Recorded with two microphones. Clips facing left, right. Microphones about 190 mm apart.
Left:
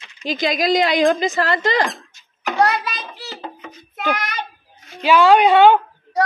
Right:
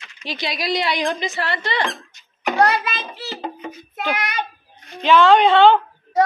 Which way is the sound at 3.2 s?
15° right (ahead or behind).